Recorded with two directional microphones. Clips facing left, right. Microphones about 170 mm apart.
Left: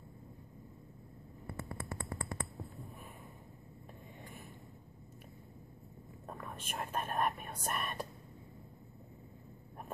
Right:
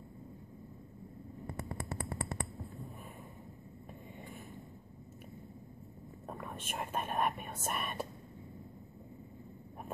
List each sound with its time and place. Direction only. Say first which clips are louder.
1.8 s a sound: right 3 dB; 15° right (ahead or behind)
6.2 s whispering: right 2 dB; 5° right (ahead or behind)
6.7 s speech: right 1 dB; 5° right (ahead or behind)